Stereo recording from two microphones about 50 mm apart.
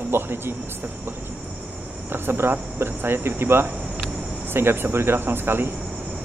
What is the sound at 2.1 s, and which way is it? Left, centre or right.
Speech, right.